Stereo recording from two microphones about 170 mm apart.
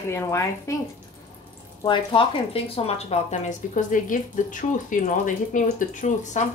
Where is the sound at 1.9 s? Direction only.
30° left (ahead or behind).